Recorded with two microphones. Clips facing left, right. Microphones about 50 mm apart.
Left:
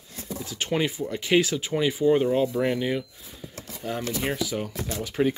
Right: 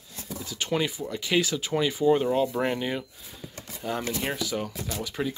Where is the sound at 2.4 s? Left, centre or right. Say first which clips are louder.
Left 2 dB; centre.